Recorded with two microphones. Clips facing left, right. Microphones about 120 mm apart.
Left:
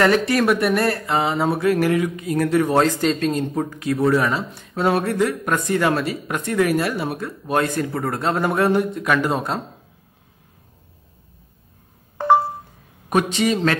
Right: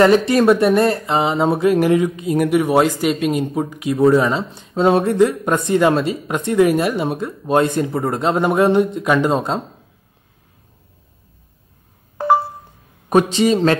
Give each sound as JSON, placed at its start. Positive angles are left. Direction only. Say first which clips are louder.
{"t": 0.0, "sound": "speech", "louder": "right 5 dB", "side_deg": -25}
{"t": 12.2, "sound": "a sound", "louder": "right 1 dB", "side_deg": -5}
{"t": 13.1, "sound": "speech", "louder": "right 5 dB", "side_deg": -30}